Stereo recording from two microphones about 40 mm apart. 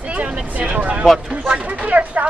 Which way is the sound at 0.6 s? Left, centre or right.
Right.